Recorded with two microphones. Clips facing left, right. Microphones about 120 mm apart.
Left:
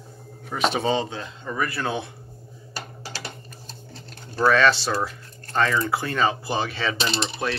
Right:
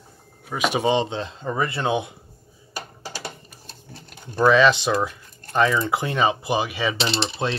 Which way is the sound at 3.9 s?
15° right (ahead or behind).